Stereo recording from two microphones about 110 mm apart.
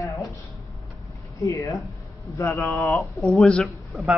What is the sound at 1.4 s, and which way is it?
Speech, 30° left (ahead or behind).